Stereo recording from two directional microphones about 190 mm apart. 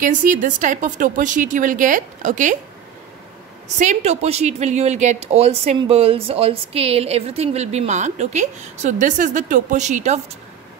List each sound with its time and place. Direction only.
0.0 s a woman's voice: 40° right (ahead or behind)
3.6 s a woman's voice: 40° right (ahead or behind)